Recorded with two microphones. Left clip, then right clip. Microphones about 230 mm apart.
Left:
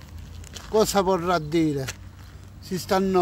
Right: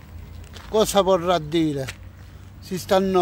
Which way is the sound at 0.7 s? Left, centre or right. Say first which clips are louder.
Right 3 dB; centre.